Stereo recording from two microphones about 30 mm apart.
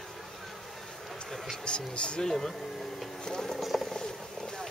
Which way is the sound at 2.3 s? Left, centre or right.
Centre.